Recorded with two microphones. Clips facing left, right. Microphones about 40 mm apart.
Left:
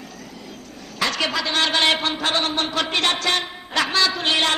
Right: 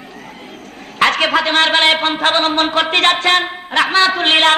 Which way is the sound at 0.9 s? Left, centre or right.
Right.